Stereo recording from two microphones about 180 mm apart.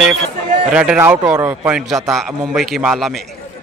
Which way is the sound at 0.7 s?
5° right (ahead or behind).